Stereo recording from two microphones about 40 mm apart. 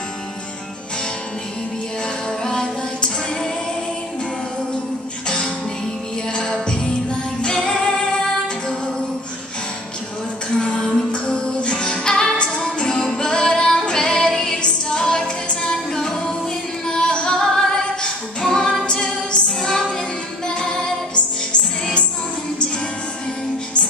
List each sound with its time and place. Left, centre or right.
2.4 s music: centre
6.3 s music: centre
10.7 s music: left
12.9 s music: centre
14.9 s female singing: centre
16.8 s singing: centre
18.9 s music: centre